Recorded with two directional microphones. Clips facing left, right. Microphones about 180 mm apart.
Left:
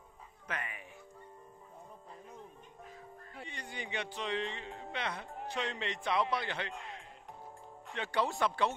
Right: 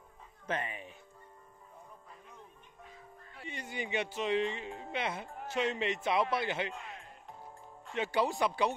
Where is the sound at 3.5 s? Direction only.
10° right (ahead or behind).